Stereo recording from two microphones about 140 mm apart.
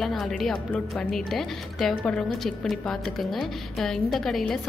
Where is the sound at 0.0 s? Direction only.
Centre (ahead or behind).